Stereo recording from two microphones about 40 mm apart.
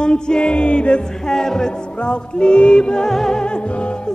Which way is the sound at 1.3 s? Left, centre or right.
Centre.